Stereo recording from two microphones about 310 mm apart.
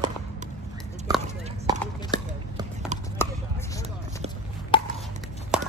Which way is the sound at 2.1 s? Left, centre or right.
Centre.